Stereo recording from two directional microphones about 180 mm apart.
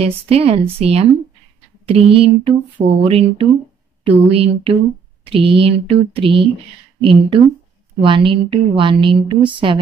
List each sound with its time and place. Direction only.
0.3 s a woman's voice: 35° right (ahead or behind)